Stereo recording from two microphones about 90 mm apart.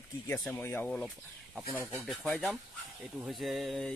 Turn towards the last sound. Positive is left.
turn(degrees=0)  # may be behind; listen again after turning